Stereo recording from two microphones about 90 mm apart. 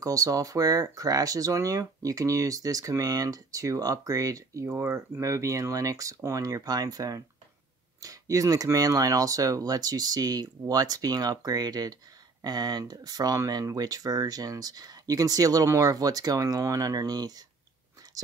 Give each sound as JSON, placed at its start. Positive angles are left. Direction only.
{"t": 0.0, "sound": "speech", "side_deg": -40}